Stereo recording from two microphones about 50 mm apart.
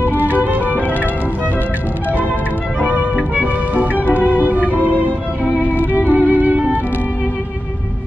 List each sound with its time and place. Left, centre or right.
0.0 s music: right
2.8 s music: right
5.4 s violin: right